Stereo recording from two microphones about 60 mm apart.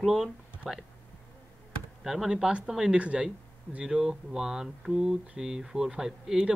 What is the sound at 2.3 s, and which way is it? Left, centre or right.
Speech, centre.